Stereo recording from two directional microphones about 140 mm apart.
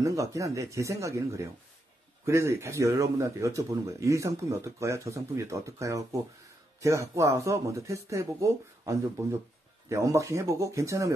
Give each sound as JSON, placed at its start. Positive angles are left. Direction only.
{"t": 0.0, "sound": "speech", "side_deg": -20}